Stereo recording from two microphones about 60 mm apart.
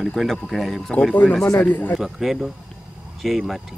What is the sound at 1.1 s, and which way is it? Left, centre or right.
Speech, centre.